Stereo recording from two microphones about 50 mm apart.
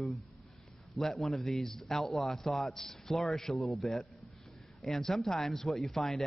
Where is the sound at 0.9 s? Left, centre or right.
Centre.